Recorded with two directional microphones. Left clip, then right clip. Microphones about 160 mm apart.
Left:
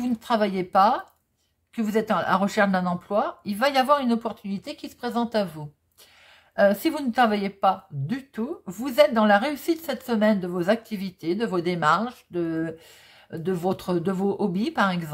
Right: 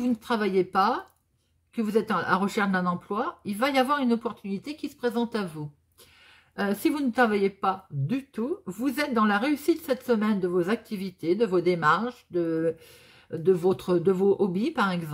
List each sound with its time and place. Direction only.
0.0 s speech: 30° left (ahead or behind)